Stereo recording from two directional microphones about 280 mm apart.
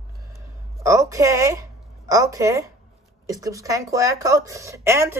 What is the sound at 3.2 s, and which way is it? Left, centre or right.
Speech, centre.